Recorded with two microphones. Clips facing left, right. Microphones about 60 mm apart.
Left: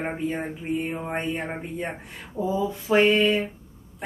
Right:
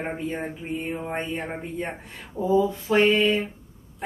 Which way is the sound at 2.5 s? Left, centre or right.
Centre.